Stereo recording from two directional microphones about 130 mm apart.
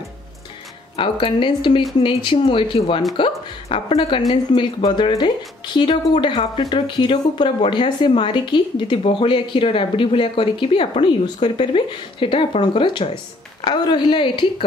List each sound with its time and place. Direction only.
0.9 s speech: 40° left (ahead or behind)